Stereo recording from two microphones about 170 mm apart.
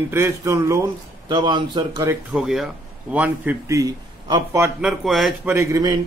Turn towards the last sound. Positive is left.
turn(degrees=-20)  # may be behind; listen again after turning